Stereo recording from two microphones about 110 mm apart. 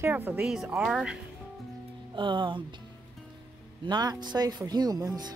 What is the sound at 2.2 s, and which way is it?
Speech, 45° right (ahead or behind).